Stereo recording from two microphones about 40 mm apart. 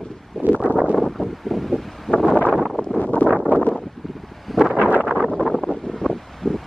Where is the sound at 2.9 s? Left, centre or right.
Left.